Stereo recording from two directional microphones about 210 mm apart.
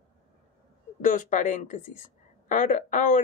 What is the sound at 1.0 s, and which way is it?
Speech, 35° left (ahead or behind).